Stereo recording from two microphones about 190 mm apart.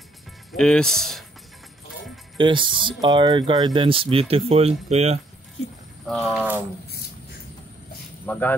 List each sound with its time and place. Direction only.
0.5 s speech: 5° left (ahead or behind)
2.3 s speech: 25° right (ahead or behind)
6.0 s speech: centre (ahead or behind)
8.3 s speech: 10° left (ahead or behind)